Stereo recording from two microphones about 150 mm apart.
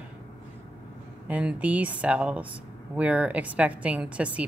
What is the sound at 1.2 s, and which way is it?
A woman's voice, 10° right (ahead or behind).